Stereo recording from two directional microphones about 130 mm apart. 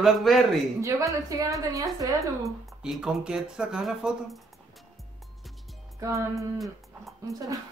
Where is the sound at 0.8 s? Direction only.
25° right (ahead or behind).